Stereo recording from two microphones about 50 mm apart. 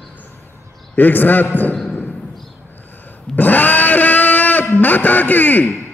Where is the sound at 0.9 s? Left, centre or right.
Left.